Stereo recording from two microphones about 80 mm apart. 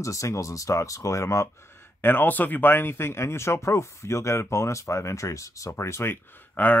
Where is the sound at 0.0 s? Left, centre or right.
Left.